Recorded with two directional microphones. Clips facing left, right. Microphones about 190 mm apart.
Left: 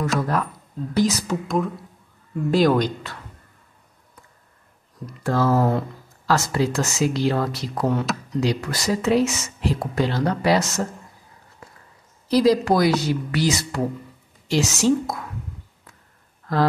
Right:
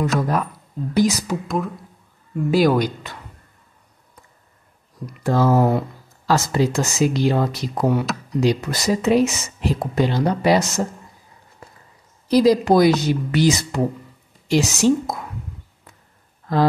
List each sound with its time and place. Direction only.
0.2 s speech: 15° right (ahead or behind)
5.0 s speech: 20° right (ahead or behind)
12.3 s speech: 15° right (ahead or behind)